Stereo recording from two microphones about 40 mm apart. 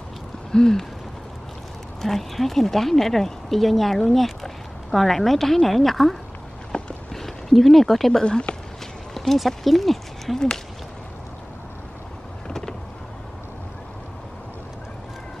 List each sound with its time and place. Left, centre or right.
0.5 s a sound: centre
2.0 s speech: centre
6.7 s run: left
7.2 s speech: centre
8.2 s speech: left
9.1 s speech: centre